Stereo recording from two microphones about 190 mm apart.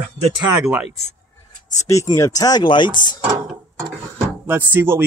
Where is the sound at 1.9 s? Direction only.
15° left (ahead or behind).